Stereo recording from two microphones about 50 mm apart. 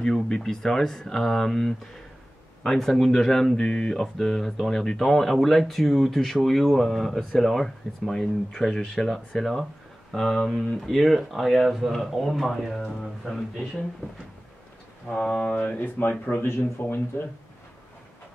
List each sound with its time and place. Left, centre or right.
0.1 s speech: centre
15.1 s speech: centre
15.8 s speech: left
16.4 s speech: left
16.8 s speech: left